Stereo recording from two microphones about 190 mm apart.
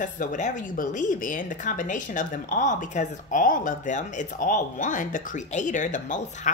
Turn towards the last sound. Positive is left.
turn(degrees=40)  # may be behind; listen again after turning